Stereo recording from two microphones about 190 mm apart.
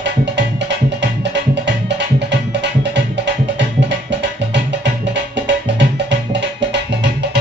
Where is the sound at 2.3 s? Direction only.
65° right (ahead or behind).